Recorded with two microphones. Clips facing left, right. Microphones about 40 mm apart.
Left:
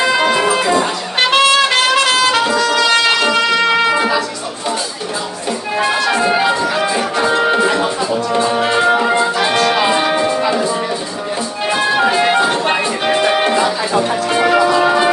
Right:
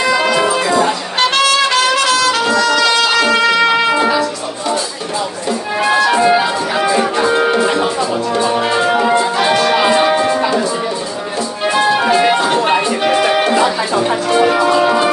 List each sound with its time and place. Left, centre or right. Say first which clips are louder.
1.3 s trumpet: left 2 dB; left
3.9 s music: right 1 dB; centre
5.8 s music: right 3 dB; centre
12.0 s music: even; centre
14.8 s music: even; centre